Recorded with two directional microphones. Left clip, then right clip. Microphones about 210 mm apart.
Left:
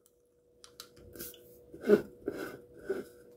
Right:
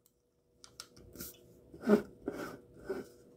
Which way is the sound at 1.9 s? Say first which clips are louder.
Left 4 dB; 5° left (ahead or behind).